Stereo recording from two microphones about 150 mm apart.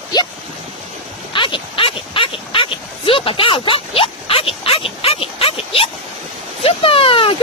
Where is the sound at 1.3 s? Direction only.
35° left (ahead or behind).